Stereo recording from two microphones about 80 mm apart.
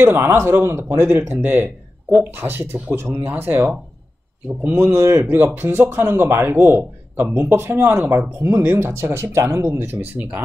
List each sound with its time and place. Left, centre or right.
0.0 s speech: right